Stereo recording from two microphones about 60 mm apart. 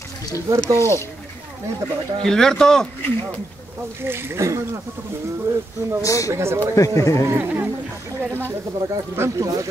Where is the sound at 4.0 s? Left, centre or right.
Right.